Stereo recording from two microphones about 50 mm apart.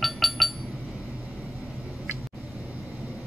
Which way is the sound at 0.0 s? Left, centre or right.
Centre.